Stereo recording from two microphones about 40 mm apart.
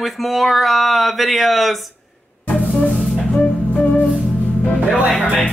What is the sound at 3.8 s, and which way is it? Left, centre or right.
Music, left.